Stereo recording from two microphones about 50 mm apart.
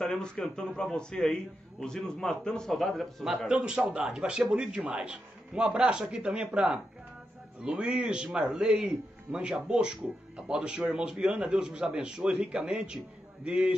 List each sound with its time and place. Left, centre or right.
0.0 s a man's voice: centre
3.4 s a man's voice: centre